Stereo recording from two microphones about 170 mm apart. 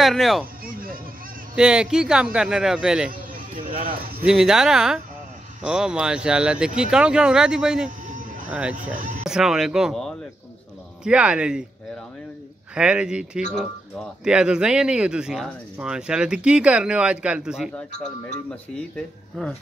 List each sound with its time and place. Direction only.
0.0 s speech: centre (ahead or behind)
0.7 s music: 60° right (ahead or behind)
1.6 s speech: 5° right (ahead or behind)
4.3 s speech: 5° right (ahead or behind)
8.1 s a sound: 50° right (ahead or behind)
8.5 s speech: 5° right (ahead or behind)
8.9 s speech: 50° right (ahead or behind)
9.2 s speech: 5° right (ahead or behind)
12.7 s speech: 5° right (ahead or behind)